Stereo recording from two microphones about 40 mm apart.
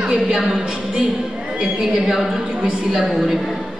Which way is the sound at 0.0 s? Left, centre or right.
Centre.